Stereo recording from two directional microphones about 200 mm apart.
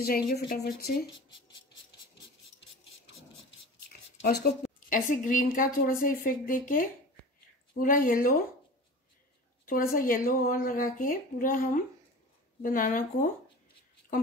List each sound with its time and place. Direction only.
0.0 s a woman's voice: 50° left (ahead or behind)
4.2 s a woman's voice: 50° left (ahead or behind)
9.7 s a woman's voice: 45° left (ahead or behind)